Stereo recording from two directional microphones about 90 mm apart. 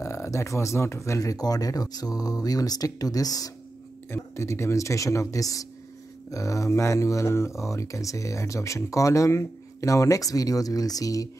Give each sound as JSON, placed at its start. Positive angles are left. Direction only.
{"t": 0.0, "sound": "speech", "side_deg": 35}
{"t": 4.1, "sound": "speech", "side_deg": 30}